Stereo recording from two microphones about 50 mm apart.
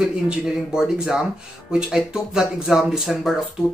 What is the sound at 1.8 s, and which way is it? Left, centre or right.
Speech, centre.